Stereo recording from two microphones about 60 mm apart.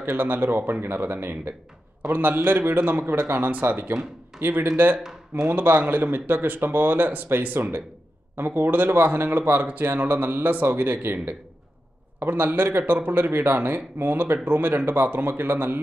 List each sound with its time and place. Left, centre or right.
0.0 s speech: right